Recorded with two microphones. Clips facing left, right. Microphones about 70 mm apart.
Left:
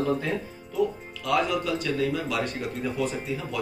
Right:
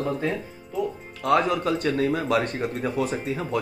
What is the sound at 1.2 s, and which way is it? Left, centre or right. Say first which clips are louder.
Speech: right 4 dB; right.